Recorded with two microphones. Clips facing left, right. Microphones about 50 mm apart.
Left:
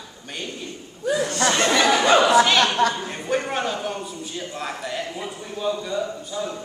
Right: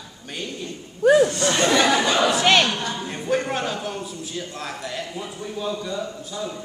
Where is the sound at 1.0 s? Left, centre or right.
Right.